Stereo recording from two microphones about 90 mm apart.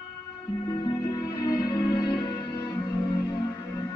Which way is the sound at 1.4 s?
45° left (ahead or behind).